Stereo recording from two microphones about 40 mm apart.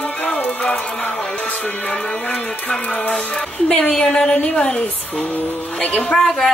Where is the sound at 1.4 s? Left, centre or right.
Left.